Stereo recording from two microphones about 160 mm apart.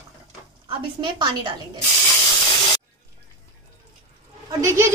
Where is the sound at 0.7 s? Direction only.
30° right (ahead or behind).